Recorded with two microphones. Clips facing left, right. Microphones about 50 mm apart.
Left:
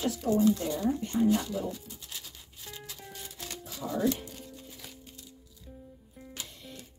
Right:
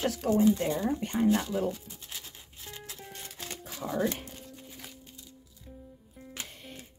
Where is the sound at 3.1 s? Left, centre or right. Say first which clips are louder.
Even; right.